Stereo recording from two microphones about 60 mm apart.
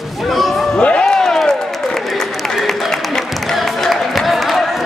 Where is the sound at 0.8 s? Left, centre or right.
Centre.